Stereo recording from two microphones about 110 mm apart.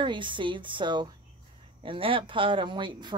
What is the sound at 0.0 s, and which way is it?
A woman's voice, 50° right (ahead or behind).